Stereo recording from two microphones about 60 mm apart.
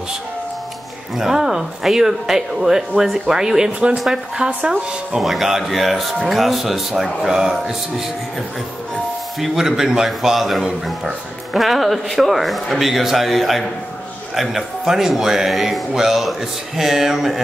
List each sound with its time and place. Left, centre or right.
1.1 s speech: centre
4.5 s speech: right
5.1 s a man's voice: centre
9.4 s a man's voice: centre